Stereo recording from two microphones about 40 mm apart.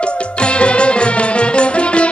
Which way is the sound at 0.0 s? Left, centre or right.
Left.